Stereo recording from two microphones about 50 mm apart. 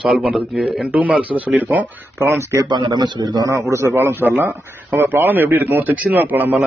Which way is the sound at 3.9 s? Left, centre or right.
Right.